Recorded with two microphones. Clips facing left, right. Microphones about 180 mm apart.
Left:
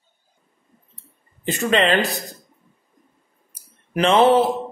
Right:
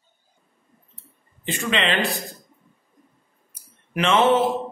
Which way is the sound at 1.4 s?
40° left (ahead or behind).